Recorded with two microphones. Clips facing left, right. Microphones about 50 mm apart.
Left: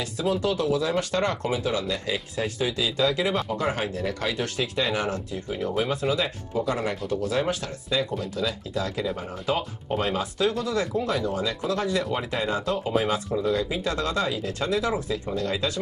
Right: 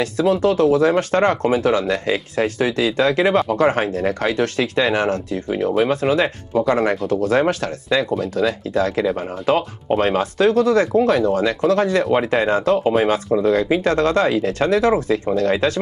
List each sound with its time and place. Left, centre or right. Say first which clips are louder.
0.0 s speech: right 9 dB; right